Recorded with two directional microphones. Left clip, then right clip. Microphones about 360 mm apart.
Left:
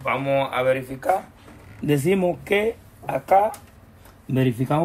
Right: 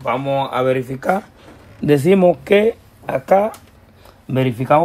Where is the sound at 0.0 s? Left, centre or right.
Centre.